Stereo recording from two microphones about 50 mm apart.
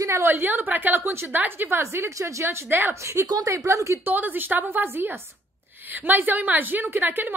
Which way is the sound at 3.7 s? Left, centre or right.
Right.